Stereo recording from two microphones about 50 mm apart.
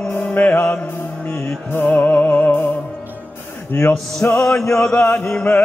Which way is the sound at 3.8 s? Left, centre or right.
Left.